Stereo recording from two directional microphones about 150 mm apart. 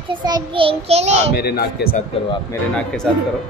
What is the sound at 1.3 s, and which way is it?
Speech, 90° left.